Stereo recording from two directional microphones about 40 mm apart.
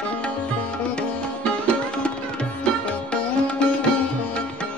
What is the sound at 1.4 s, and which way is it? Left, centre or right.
Sitar, left.